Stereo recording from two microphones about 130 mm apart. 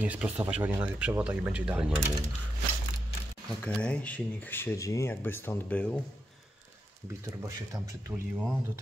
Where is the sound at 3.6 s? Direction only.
10° left (ahead or behind).